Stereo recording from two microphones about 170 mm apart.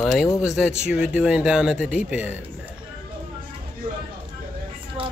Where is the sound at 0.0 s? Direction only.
Centre (ahead or behind).